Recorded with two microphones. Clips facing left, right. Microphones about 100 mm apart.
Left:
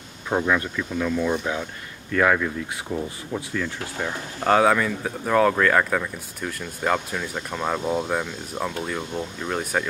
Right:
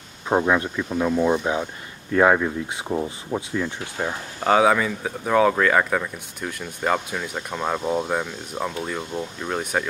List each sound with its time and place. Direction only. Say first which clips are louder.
0.3 s speech: right 3 dB; 20° right (ahead or behind)
4.4 s speech: right 1 dB; centre (ahead or behind)